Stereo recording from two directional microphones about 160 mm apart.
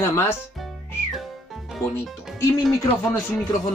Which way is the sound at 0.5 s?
Centre (ahead or behind).